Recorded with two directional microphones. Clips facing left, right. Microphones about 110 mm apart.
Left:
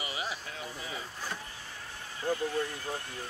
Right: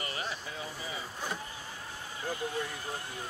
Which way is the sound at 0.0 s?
10° left (ahead or behind).